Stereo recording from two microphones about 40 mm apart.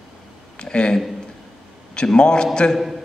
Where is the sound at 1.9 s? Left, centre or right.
Left.